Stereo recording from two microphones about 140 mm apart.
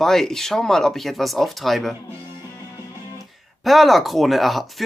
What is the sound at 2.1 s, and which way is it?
Music, 20° right (ahead or behind).